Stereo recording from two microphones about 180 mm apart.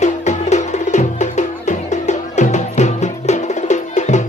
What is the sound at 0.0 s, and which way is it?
Music, 40° left (ahead or behind).